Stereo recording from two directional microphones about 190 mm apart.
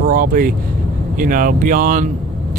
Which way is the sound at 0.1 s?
45° right (ahead or behind).